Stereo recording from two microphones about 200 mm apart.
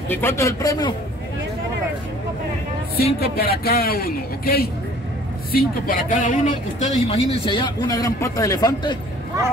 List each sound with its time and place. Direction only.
0.1 s a man's voice: 10° left (ahead or behind)
3.0 s a man's voice: 50° left (ahead or behind); by 8.9 s 20° left (ahead or behind)